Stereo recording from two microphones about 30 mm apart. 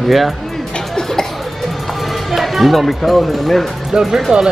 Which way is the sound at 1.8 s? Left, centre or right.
Centre.